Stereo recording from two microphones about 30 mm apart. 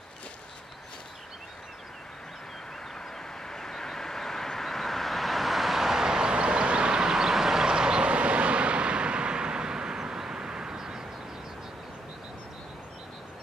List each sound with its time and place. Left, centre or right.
3.4 s vehicle: centre
6.3 s vehicle: right